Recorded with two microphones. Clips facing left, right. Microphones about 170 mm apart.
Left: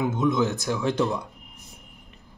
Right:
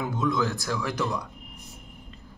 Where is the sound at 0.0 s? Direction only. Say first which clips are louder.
Left 4 dB; 20° left (ahead or behind).